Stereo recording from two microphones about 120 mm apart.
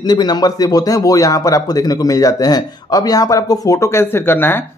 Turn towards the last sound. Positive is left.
turn(degrees=20)  # may be behind; listen again after turning